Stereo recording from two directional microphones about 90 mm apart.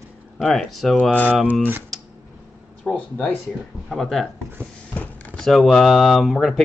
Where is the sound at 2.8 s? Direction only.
15° left (ahead or behind).